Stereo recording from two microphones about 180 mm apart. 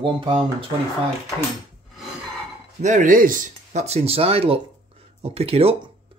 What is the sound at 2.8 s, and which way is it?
Speech, 45° right (ahead or behind).